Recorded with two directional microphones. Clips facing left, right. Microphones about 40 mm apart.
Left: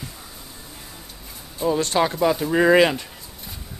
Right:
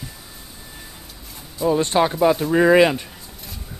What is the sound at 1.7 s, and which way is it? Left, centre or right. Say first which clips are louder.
Speech: right 3 dB; right.